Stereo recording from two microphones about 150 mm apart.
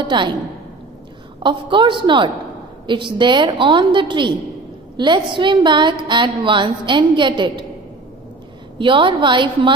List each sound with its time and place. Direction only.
0.0 s a woman's voice: 30° right (ahead or behind)
1.4 s a woman's voice: 30° right (ahead or behind)
8.7 s a woman's voice: 35° right (ahead or behind)